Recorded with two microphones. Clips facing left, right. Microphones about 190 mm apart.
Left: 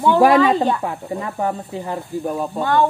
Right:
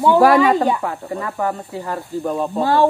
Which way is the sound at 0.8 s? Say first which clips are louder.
Even; 20° left (ahead or behind).